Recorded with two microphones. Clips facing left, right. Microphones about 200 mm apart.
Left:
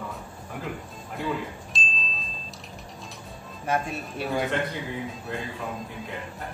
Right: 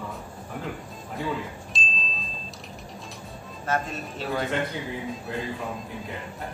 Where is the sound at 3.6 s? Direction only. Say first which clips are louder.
Left 1 dB; 15° left (ahead or behind).